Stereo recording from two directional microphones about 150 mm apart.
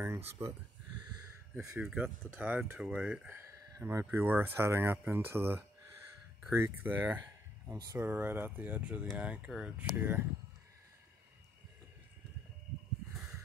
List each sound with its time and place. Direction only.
0.0 s speech: 15° right (ahead or behind)
1.8 s speech: 10° right (ahead or behind)